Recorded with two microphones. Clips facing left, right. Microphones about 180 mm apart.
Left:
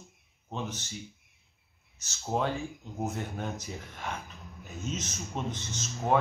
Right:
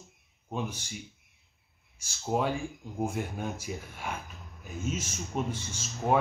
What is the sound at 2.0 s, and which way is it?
Speech, 10° right (ahead or behind).